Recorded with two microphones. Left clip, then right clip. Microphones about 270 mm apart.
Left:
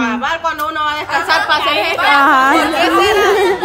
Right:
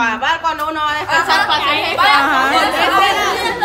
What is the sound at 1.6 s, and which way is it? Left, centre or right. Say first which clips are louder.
Speech: even; left.